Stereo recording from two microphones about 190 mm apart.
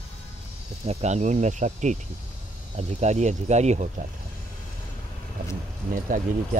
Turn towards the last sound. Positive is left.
turn(degrees=-45)  # may be behind; listen again after turning